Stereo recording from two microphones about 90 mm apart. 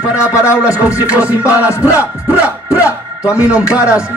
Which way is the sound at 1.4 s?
30° left (ahead or behind).